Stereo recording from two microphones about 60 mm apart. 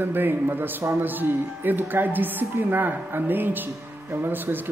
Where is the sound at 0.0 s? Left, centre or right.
Right.